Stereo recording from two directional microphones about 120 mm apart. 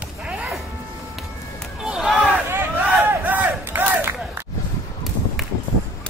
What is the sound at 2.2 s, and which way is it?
Crowd, 15° right (ahead or behind).